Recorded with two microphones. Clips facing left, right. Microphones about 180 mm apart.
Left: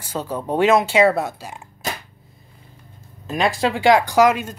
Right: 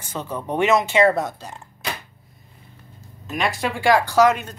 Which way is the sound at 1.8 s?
45° left (ahead or behind).